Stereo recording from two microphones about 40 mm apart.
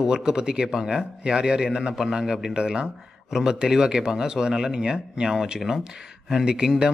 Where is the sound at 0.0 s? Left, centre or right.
Centre.